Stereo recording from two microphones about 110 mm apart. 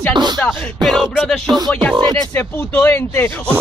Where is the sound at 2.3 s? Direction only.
20° left (ahead or behind).